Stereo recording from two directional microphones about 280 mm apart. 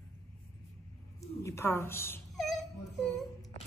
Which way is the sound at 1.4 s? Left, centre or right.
Centre.